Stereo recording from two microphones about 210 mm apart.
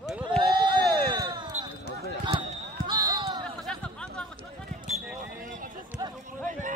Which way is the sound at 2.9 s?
20° right (ahead or behind).